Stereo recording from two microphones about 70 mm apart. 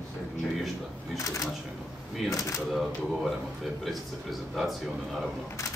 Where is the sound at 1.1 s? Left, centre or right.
Left.